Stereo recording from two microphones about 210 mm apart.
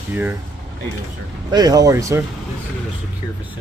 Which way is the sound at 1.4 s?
20° right (ahead or behind).